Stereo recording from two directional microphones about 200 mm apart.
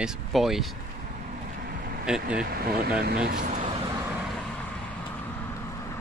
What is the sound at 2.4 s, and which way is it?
Speech, 50° right (ahead or behind).